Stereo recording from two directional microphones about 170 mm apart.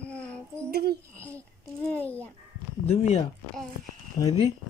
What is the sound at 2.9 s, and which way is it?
Speech, 40° left (ahead or behind).